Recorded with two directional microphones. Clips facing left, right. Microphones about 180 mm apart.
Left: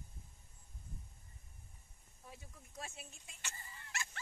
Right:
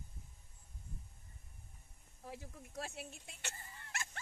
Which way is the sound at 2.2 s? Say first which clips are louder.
Right 7 dB; 70° right (ahead or behind).